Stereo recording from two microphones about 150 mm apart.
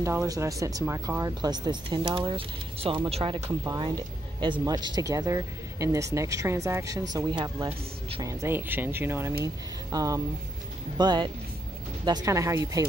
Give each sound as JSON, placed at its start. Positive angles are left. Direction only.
{"t": 0.0, "sound": "speech", "side_deg": -20}
{"t": 3.4, "sound": "speech", "side_deg": -20}